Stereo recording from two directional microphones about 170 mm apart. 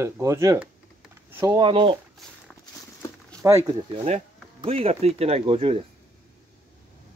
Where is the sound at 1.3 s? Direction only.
15° right (ahead or behind).